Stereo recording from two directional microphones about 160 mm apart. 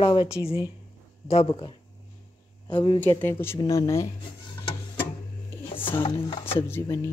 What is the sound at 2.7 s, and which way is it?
Speech, 30° left (ahead or behind).